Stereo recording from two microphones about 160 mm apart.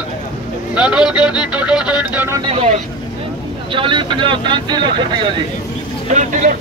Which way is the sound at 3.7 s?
30° right (ahead or behind).